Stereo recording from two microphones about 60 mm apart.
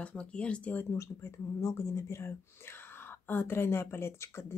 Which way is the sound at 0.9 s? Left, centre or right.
Left.